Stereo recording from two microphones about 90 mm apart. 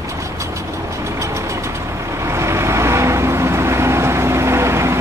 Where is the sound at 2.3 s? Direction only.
30° right (ahead or behind).